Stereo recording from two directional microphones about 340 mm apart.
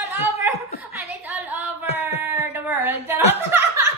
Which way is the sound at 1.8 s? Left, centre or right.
Centre.